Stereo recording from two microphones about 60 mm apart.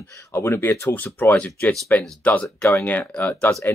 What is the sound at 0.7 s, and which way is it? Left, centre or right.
Speech, left.